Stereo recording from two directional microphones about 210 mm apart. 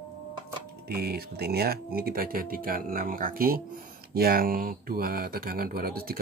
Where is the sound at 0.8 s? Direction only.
45° right (ahead or behind).